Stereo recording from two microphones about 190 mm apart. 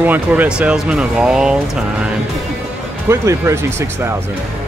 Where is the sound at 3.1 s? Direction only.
15° right (ahead or behind).